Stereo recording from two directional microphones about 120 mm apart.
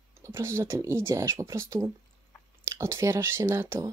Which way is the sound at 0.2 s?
20° right (ahead or behind).